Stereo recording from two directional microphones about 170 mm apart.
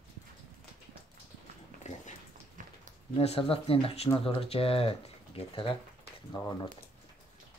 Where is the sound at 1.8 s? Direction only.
45° left (ahead or behind).